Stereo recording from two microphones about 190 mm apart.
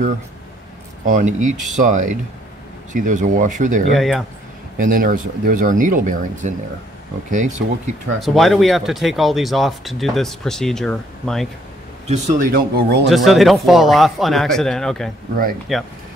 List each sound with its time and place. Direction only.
1.0 s speech: 40° right (ahead or behind)
3.9 s speech: centre (ahead or behind)
4.7 s speech: 45° right (ahead or behind)
8.2 s speech: centre (ahead or behind)
12.1 s speech: 40° right (ahead or behind); by 13.1 s 60° right (ahead or behind)
13.1 s speech: centre (ahead or behind)